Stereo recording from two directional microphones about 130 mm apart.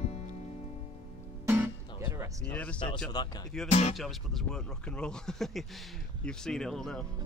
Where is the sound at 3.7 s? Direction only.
55° left (ahead or behind).